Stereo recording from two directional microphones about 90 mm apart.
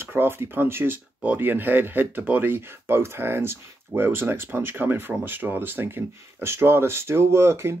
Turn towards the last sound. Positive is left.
turn(degrees=-30)  # may be behind; listen again after turning